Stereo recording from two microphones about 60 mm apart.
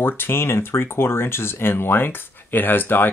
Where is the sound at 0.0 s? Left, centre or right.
Left.